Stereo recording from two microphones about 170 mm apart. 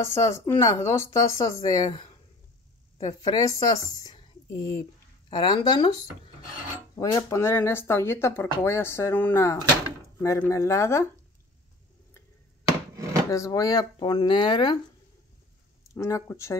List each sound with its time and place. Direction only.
0.0 s speech: 15° left (ahead or behind)
5.3 s speech: 25° left (ahead or behind)
12.9 s chopping: 20° right (ahead or behind)
13.3 s speech: 20° left (ahead or behind)
15.9 s speech: 20° left (ahead or behind)